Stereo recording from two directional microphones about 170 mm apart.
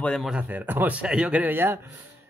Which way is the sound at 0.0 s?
Centre (ahead or behind).